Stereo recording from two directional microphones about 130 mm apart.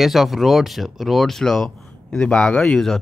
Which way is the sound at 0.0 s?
Centre (ahead or behind).